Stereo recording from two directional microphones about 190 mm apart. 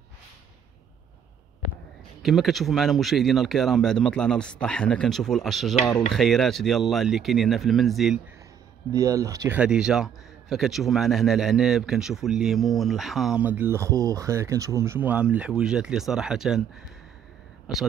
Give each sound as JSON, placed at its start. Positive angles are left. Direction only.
{"t": 2.2, "sound": "a man's voice", "side_deg": 0}
{"t": 8.9, "sound": "speech", "side_deg": -15}
{"t": 9.6, "sound": "a man's voice", "side_deg": -5}
{"t": 17.7, "sound": "a man's voice", "side_deg": -5}